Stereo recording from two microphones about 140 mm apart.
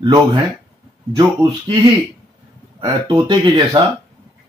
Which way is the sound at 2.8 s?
30° right (ahead or behind).